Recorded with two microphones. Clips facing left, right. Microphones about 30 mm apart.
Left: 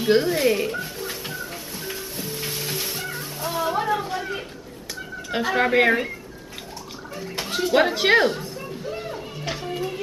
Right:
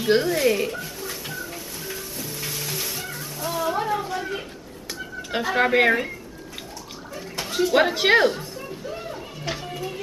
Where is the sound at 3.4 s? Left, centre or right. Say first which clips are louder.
Left 1 dB; centre.